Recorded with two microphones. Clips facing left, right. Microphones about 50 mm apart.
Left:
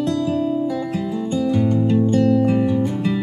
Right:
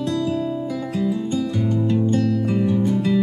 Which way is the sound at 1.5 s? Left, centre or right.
Centre.